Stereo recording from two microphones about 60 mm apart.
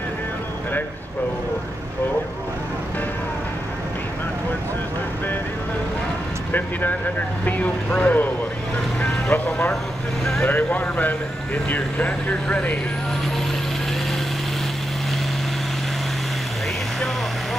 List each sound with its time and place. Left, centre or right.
6.5 s speech: left
9.3 s speech: left